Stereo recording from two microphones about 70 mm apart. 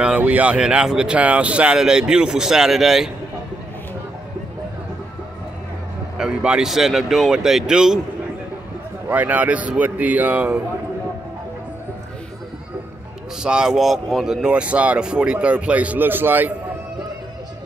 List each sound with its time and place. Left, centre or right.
0.2 s speech: right; by 3.1 s centre
6.1 s speech: centre
9.1 s speech: right
13.4 s speech: centre; by 16.5 s right